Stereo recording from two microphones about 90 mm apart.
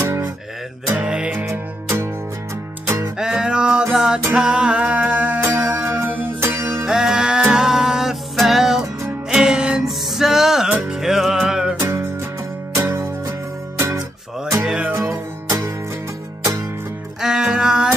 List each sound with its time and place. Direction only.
0.0 s guitar: 30° right (ahead or behind)
0.8 s music: 15° right (ahead or behind)
1.3 s music: 30° right (ahead or behind)
3.2 s music: 10° right (ahead or behind)
5.4 s music: 35° right (ahead or behind)
6.9 s music: 5° right (ahead or behind)
11.8 s music: 30° right (ahead or behind)
14.9 s music: 30° right (ahead or behind)
17.2 s music: 5° right (ahead or behind)